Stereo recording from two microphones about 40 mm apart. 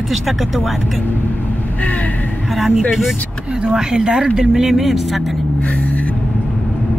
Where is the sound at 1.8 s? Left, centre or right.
Left.